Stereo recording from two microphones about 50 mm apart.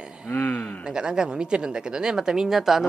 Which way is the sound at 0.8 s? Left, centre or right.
Centre.